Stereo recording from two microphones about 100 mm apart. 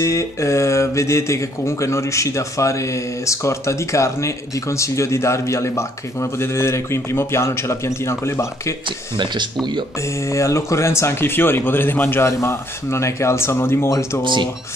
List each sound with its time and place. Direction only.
0.0 s speech: 30° left (ahead or behind)
8.8 s speech: 50° right (ahead or behind)
10.0 s speech: 30° left (ahead or behind)
14.2 s speech: 50° right (ahead or behind)